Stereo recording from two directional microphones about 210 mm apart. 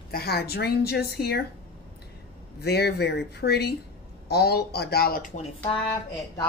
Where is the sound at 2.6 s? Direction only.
50° left (ahead or behind).